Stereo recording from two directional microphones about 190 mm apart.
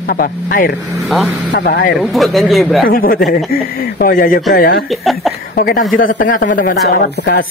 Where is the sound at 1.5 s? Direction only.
55° left (ahead or behind).